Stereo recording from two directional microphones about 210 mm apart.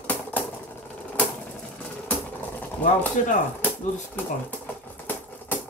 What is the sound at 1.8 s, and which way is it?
Typewriter, 5° left (ahead or behind).